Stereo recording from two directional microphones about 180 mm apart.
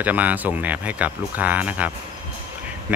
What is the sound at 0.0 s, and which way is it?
Speech, 10° right (ahead or behind).